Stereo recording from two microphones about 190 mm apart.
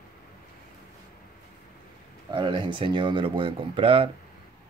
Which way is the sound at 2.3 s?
25° right (ahead or behind).